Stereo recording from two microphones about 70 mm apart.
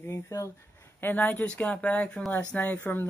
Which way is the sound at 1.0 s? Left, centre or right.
Left.